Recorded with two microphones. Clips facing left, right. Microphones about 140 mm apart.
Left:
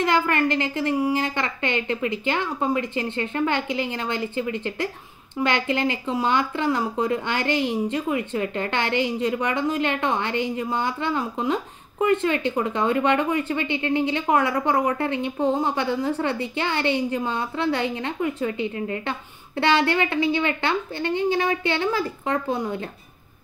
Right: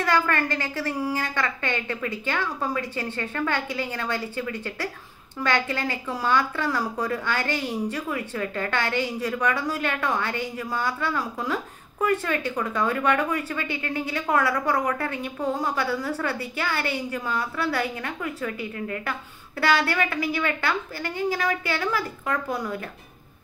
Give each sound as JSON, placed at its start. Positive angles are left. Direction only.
{"t": 0.0, "sound": "speech", "side_deg": 20}